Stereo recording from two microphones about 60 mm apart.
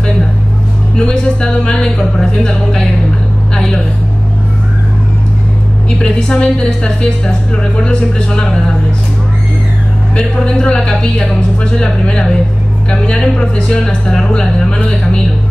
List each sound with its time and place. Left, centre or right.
0.9 s a woman's voice: centre
5.9 s a woman's voice: centre
10.1 s a woman's voice: centre